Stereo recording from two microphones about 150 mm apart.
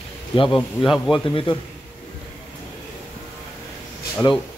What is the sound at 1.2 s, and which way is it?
Speech, 35° left (ahead or behind).